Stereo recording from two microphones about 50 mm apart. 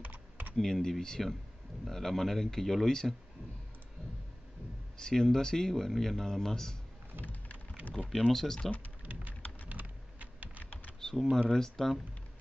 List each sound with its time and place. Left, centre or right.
0.0 s typing: right
0.6 s speech: centre
4.9 s speech: centre
7.2 s rain: right
8.0 s speech: centre
9.0 s typing: right
11.0 s computer keyboard: centre
11.3 s speech: centre